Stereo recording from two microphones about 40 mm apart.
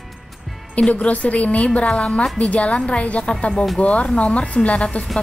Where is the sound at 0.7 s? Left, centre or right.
Left.